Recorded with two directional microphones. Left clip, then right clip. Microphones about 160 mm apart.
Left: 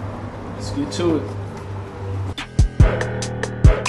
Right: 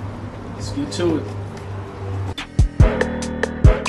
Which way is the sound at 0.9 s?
10° left (ahead or behind).